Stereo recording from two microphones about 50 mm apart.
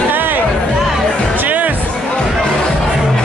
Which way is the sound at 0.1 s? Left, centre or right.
Right.